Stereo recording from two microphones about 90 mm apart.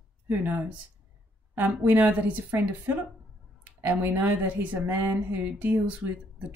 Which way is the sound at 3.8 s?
20° right (ahead or behind).